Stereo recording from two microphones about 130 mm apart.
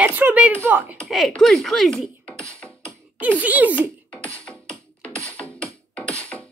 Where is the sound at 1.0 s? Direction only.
Centre (ahead or behind).